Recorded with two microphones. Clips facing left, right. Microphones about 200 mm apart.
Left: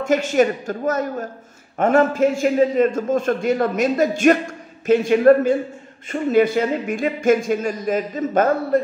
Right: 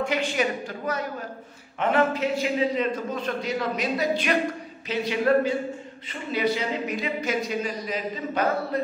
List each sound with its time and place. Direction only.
0.0 s a man's voice: 45° left (ahead or behind)